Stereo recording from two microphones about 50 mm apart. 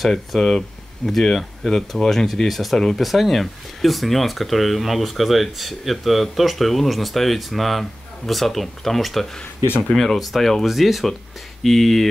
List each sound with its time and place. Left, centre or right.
0.0 s speech: centre
0.4 s speech: centre